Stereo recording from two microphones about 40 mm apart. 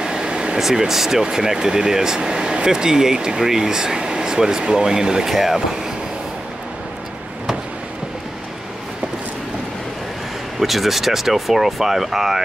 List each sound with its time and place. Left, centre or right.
0.0 s vehicle: centre
0.6 s speech: centre
10.6 s speech: centre